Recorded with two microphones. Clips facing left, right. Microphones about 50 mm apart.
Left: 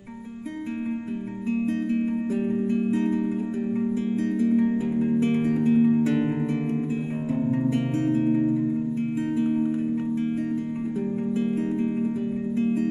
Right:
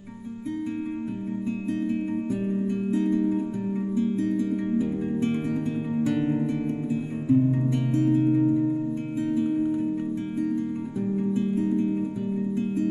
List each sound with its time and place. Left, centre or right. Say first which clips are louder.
1.5 s music: left 4 dB; left
2.4 s music: left 3 dB; left
4.1 s music: left 2 dB; left
4.6 s music: left 3 dB; centre
8.1 s music: right 1 dB; left
9.4 s music: left 1 dB; left
11.0 s music: right 1 dB; left